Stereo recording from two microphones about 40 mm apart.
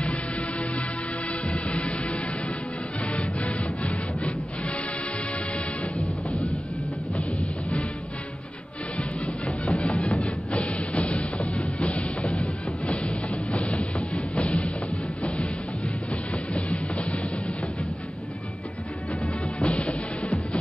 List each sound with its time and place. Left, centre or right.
0.0 s music: left
3.8 s wood: left
7.2 s music: left
8.9 s music: left
16.1 s music: left
19.2 s music: left